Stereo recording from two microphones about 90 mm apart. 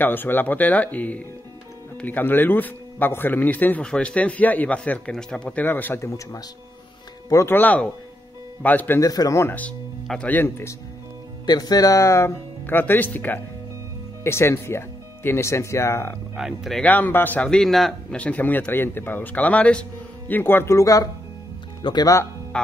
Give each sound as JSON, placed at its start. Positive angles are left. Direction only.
{"t": 0.0, "sound": "a man's voice", "side_deg": 20}
{"t": 7.4, "sound": "a man's voice", "side_deg": 20}
{"t": 9.0, "sound": "speech", "side_deg": 40}
{"t": 9.4, "sound": "a man's voice", "side_deg": 25}
{"t": 11.4, "sound": "speech", "side_deg": 50}
{"t": 12.6, "sound": "a man's voice", "side_deg": 20}
{"t": 16.3, "sound": "speech", "side_deg": -5}
{"t": 16.8, "sound": "a man's voice", "side_deg": 20}
{"t": 17.6, "sound": "speech", "side_deg": 5}
{"t": 18.2, "sound": "a man's voice", "side_deg": 15}